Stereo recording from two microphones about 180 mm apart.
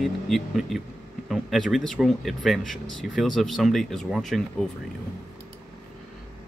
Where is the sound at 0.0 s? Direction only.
Centre (ahead or behind).